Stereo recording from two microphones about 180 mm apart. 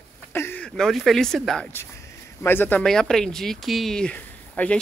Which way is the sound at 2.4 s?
10° left (ahead or behind).